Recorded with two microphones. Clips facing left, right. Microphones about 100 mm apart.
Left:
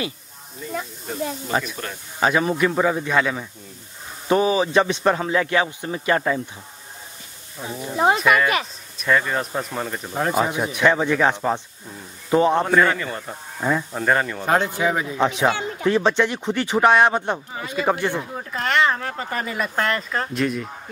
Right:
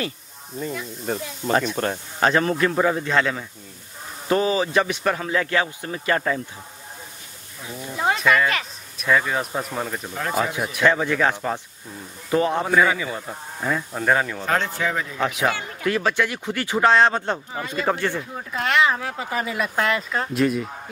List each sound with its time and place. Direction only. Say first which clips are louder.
1.8 s speech: right 8 dB; 45° right (ahead or behind)
2.1 s a man's voice: left 1 dB; 10° left (ahead or behind)
7.6 s a man's voice: left 4 dB; 25° left (ahead or behind)
8.2 s speech: left 1 dB; centre (ahead or behind)
10.1 s a man's voice: left 4 dB; 25° left (ahead or behind)
12.6 s speech: left 1 dB; 5° right (ahead or behind)
13.6 s speech: left 3 dB; 15° left (ahead or behind)
13.9 s speech: even; centre (ahead or behind)
14.4 s a man's voice: left 3 dB; 15° left (ahead or behind)
18.3 s speech: even; centre (ahead or behind)